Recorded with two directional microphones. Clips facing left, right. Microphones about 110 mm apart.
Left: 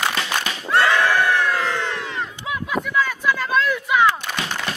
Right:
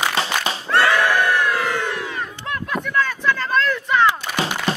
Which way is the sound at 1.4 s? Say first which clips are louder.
Right 1 dB; 15° right (ahead or behind).